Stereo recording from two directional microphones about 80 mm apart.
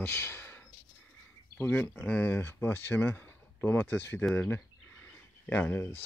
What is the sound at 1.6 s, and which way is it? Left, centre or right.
Speech, left.